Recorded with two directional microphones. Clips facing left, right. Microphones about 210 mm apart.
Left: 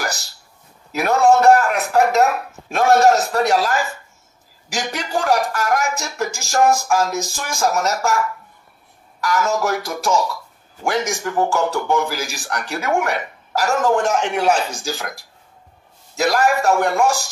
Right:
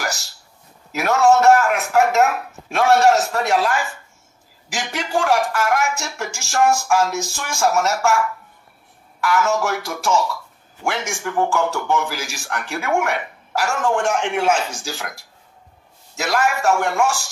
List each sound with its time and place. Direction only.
1.0 s a man's voice: 35° left (ahead or behind)
9.2 s a man's voice: 40° left (ahead or behind)